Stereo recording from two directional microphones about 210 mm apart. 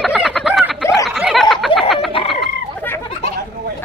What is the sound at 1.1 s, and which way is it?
Snicker, centre (ahead or behind).